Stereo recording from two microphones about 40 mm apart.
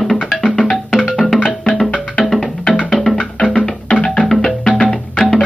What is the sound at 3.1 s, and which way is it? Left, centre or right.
Music, left.